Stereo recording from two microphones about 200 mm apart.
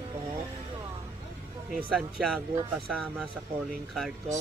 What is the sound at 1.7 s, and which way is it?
Speech, centre (ahead or behind).